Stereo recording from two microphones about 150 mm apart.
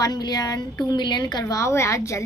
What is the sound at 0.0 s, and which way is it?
A woman's voice, 25° left (ahead or behind).